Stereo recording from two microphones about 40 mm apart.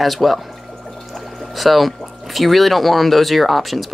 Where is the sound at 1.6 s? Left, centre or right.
Centre.